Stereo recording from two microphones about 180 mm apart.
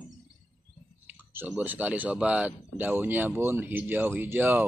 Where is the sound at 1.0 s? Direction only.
10° right (ahead or behind).